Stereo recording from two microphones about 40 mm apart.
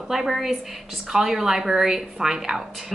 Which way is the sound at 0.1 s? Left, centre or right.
Centre.